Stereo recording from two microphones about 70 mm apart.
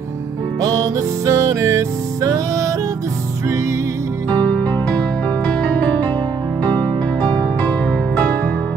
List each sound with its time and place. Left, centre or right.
0.7 s music: right
4.3 s music: centre